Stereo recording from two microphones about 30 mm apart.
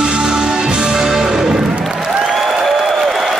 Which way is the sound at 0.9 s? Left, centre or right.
Centre.